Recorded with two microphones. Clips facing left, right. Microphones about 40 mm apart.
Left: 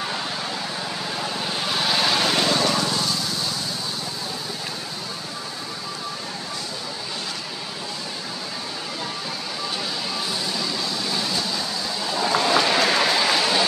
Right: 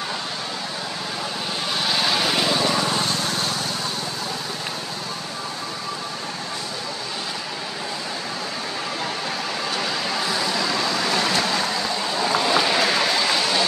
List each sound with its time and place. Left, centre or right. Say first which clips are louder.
1.7 s vehicle: left 1 dB; centre
3.0 s vehicle: right 2 dB; right
10.4 s vehicle: right 4 dB; right
12.1 s vehicle: left 1 dB; centre